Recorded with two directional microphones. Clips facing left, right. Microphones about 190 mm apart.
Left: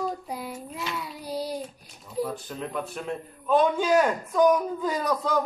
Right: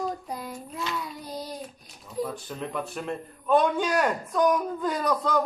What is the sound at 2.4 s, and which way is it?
A man's voice, centre (ahead or behind).